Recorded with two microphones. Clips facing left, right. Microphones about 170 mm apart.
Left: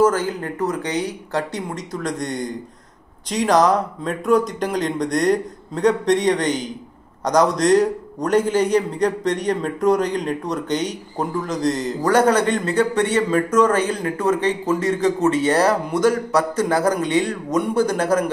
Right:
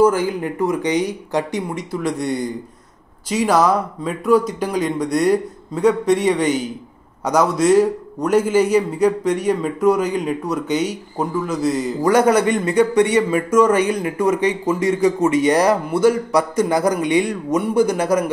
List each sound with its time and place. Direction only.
0.0 s a man's voice: 15° right (ahead or behind)